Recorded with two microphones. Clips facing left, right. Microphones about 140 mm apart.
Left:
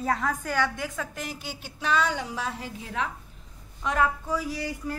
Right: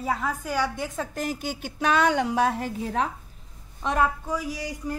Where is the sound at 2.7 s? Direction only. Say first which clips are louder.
Right 5 dB; 40° right (ahead or behind).